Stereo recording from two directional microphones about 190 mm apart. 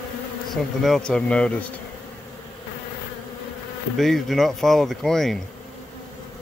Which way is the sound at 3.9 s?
Centre (ahead or behind).